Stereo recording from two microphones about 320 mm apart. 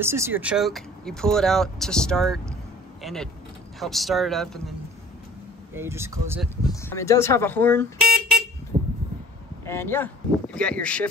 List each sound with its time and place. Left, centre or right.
0.0 s speech: centre
5.8 s speech: centre
6.7 s speech: centre
8.7 s a sound: right
9.7 s speech: centre